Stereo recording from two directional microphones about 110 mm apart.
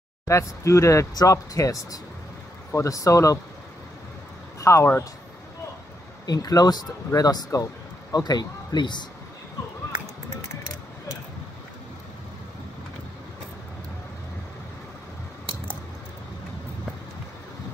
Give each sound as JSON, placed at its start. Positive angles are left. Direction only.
{"t": 0.3, "sound": "speech", "side_deg": 25}
{"t": 4.6, "sound": "speech", "side_deg": 25}
{"t": 6.2, "sound": "speech", "side_deg": 35}